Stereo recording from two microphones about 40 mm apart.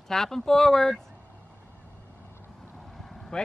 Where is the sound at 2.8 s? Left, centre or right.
Centre.